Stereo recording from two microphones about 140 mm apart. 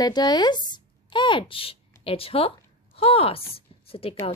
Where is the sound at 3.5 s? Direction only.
40° left (ahead or behind).